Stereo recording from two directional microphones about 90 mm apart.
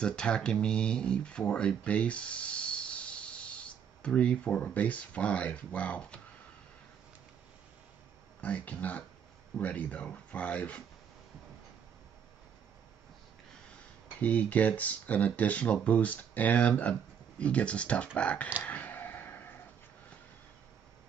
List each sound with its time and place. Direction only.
0.0 s speech: 10° left (ahead or behind)
8.4 s speech: 15° left (ahead or behind)
14.2 s speech: 15° left (ahead or behind)
18.6 s a sound: 20° left (ahead or behind)